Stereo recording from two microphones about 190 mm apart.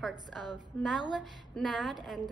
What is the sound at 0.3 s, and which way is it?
A woman's voice, centre (ahead or behind).